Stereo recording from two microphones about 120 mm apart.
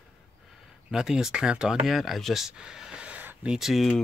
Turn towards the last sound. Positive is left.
turn(degrees=0)  # may be behind; listen again after turning